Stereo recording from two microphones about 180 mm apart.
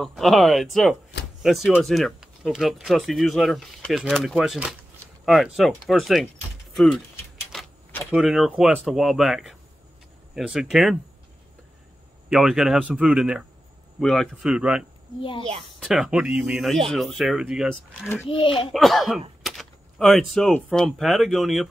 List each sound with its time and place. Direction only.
0.0 s speech: centre (ahead or behind)
7.5 s speech: centre (ahead or behind)
12.3 s speech: centre (ahead or behind)
15.1 s a child's voice: 30° left (ahead or behind)
15.8 s speech: centre (ahead or behind)
18.3 s a child's voice: 30° left (ahead or behind)
18.7 s speech: centre (ahead or behind)